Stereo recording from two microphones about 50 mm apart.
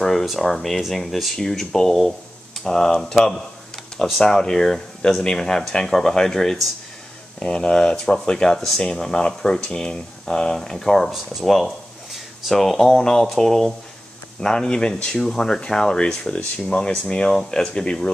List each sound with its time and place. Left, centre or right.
0.0 s speech: centre
7.3 s speech: centre